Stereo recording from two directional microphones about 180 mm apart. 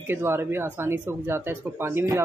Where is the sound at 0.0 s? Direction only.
15° right (ahead or behind).